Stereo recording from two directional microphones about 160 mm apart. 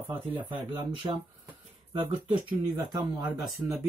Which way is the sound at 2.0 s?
30° right (ahead or behind).